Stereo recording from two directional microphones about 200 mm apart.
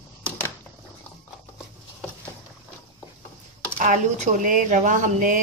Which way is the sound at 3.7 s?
40° right (ahead or behind).